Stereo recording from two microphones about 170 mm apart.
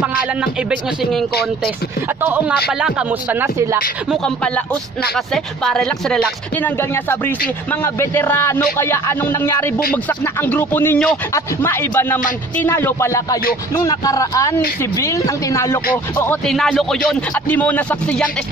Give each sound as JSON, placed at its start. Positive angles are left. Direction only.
{"t": 0.0, "sound": "speech", "side_deg": -5}
{"t": 4.1, "sound": "a man's voice", "side_deg": 5}
{"t": 16.4, "sound": "speech", "side_deg": 0}